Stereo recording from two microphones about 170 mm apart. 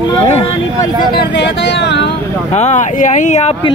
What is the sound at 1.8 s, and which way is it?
Speech, 90° left.